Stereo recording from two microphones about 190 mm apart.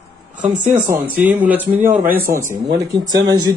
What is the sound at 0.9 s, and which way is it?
Speech, 10° right (ahead or behind).